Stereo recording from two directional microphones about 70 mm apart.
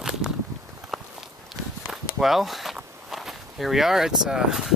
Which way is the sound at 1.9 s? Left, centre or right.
Centre.